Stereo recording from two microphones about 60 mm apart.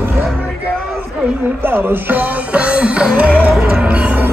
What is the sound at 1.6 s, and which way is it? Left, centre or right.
Music, right.